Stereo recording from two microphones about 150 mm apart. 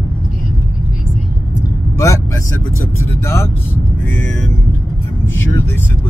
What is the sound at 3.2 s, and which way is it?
Speech, 15° left (ahead or behind).